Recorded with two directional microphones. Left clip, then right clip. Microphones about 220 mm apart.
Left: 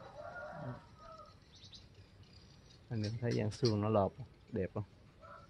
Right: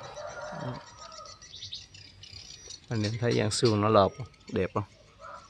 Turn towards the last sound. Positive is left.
turn(degrees=-10)  # may be behind; listen again after turning